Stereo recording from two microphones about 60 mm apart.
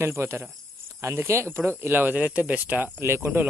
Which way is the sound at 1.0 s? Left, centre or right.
Right.